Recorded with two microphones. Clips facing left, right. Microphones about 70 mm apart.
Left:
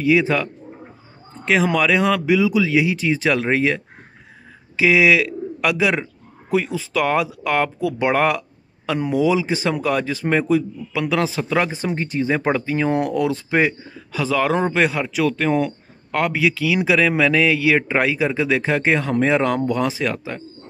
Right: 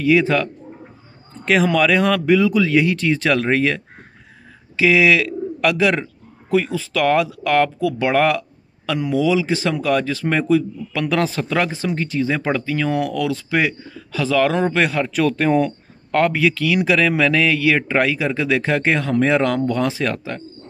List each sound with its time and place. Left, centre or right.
0.0 s a man's voice: centre